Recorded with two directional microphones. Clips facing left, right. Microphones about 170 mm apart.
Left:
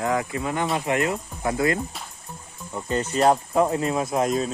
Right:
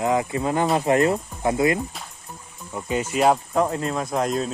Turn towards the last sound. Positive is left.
turn(degrees=0)  # may be behind; listen again after turning